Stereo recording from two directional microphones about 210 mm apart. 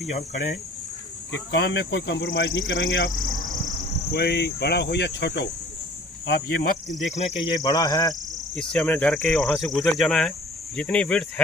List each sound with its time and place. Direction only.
1.5 s speech: 55° left (ahead or behind)
4.1 s cricket: 50° left (ahead or behind)
7.2 s speech: 30° left (ahead or behind)
7.6 s speech: 15° left (ahead or behind)
8.5 s cricket: 5° left (ahead or behind)